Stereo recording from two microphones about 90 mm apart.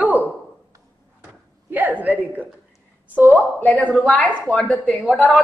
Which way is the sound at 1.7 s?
20° right (ahead or behind).